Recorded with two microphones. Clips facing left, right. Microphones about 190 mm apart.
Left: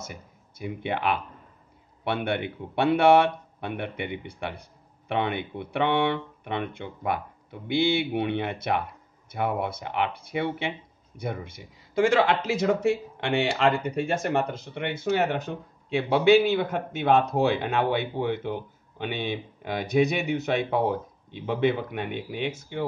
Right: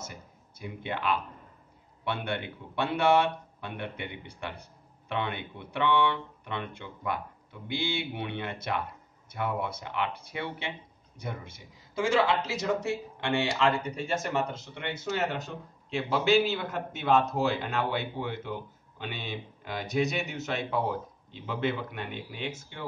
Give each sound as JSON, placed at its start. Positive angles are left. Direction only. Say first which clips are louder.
{"t": 0.6, "sound": "speech", "louder": "left 5 dB", "side_deg": 60}